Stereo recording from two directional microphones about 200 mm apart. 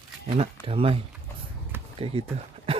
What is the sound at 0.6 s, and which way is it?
Speech, 30° right (ahead or behind).